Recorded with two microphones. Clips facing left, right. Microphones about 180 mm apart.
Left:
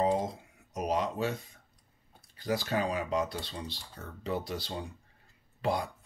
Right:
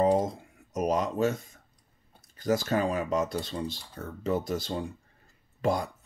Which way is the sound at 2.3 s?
45° right (ahead or behind).